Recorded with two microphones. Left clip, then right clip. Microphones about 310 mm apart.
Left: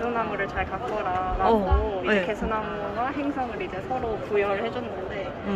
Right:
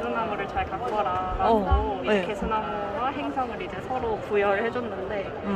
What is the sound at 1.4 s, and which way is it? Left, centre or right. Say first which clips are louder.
Speech: even; centre.